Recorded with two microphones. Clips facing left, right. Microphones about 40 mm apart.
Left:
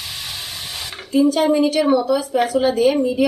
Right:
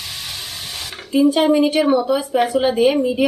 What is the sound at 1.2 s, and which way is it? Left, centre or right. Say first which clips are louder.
Speech: right 2 dB; right.